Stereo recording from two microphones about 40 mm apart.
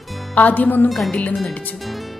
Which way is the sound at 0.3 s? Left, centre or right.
Left.